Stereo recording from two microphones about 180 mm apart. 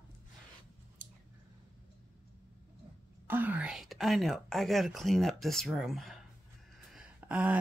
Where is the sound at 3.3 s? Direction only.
10° right (ahead or behind).